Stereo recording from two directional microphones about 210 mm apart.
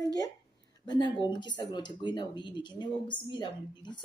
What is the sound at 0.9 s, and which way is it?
Speech, 20° left (ahead or behind).